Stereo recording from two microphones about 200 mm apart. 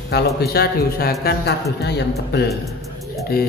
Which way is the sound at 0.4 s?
50° left (ahead or behind).